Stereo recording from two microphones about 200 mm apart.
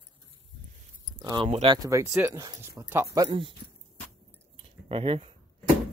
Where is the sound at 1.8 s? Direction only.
15° right (ahead or behind).